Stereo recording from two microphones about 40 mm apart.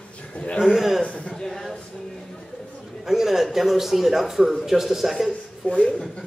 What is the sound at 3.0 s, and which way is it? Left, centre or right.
A man's voice, centre.